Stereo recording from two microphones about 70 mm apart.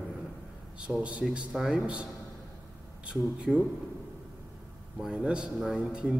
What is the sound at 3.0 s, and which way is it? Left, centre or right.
Speech, centre.